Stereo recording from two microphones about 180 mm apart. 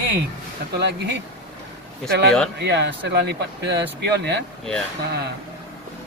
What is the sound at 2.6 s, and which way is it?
Speech, 70° right (ahead or behind).